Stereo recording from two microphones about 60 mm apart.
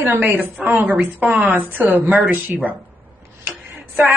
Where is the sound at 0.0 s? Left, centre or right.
Right.